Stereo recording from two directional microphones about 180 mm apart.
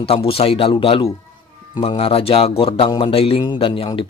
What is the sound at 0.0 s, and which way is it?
A man's voice, 35° left (ahead or behind).